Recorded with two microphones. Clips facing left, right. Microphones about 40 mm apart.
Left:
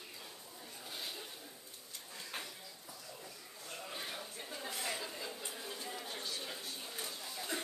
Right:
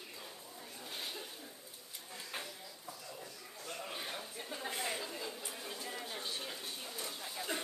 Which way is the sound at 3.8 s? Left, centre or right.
Centre.